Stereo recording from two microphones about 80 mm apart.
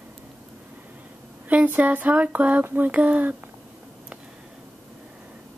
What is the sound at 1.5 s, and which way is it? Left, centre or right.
Speech, right.